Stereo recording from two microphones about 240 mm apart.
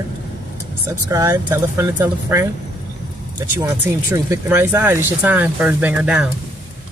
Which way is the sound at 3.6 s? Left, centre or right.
Centre.